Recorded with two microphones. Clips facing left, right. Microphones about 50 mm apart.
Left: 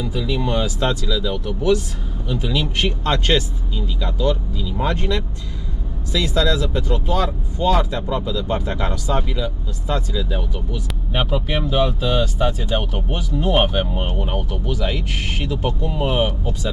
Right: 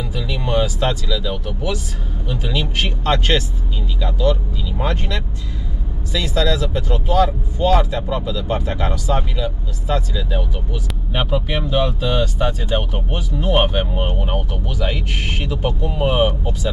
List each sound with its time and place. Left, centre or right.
0.0 s vehicle: centre
1.0 s speech: centre
11.1 s speech: centre